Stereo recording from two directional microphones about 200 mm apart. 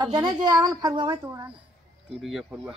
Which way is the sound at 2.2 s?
Centre (ahead or behind).